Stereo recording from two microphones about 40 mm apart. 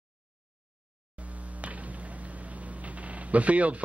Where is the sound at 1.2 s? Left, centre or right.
Right.